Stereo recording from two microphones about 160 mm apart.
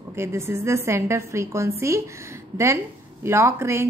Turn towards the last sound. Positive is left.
turn(degrees=-15)  # may be behind; listen again after turning